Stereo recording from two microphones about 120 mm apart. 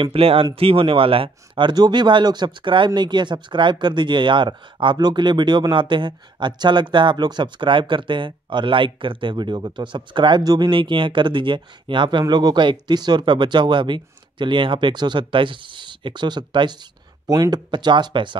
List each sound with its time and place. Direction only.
0.0 s speech: 50° right (ahead or behind)